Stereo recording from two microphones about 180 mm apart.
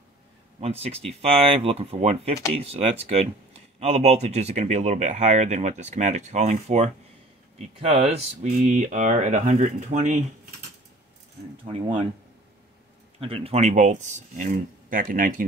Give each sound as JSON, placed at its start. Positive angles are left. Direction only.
{"t": 0.6, "sound": "speech", "side_deg": -35}
{"t": 11.6, "sound": "speech", "side_deg": -30}
{"t": 13.2, "sound": "speech", "side_deg": -30}